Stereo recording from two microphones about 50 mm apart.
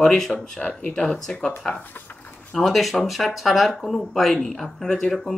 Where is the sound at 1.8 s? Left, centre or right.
Left.